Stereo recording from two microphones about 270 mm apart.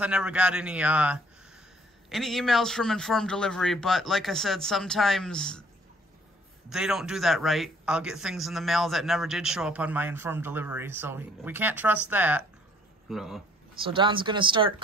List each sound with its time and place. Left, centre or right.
0.0 s a man's voice: centre
6.7 s a man's voice: centre
13.8 s speech: centre